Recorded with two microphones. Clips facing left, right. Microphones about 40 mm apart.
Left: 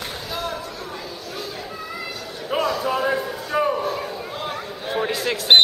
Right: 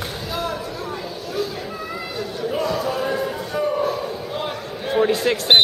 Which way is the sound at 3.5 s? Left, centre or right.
Left.